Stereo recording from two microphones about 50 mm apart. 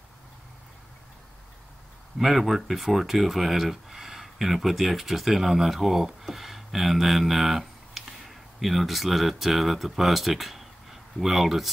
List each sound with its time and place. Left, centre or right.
2.1 s speech: centre